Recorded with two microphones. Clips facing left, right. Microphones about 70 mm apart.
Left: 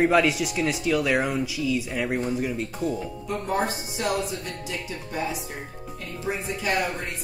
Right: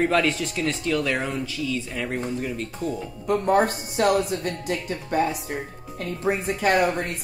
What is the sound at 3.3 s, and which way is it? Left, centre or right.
Speech, right.